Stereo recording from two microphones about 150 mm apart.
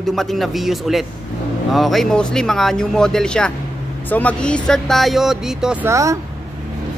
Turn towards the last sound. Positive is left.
turn(degrees=-20)  # may be behind; listen again after turning